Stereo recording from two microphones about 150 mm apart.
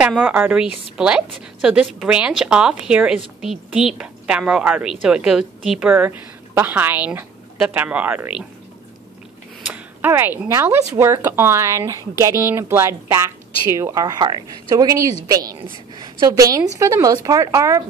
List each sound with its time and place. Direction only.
0.0 s a woman's voice: 10° right (ahead or behind)
10.0 s a woman's voice: 15° right (ahead or behind)